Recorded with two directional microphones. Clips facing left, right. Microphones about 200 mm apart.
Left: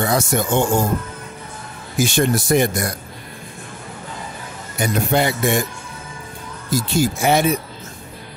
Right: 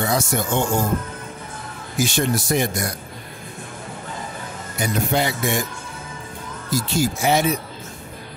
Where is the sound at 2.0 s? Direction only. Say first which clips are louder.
Left 3 dB; 55° left (ahead or behind).